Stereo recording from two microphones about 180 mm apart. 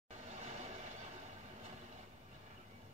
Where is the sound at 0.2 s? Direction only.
35° right (ahead or behind).